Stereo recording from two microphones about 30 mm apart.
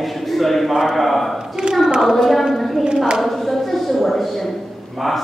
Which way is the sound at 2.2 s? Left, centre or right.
Centre.